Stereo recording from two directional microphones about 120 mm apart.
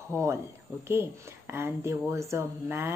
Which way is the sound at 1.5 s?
20° right (ahead or behind).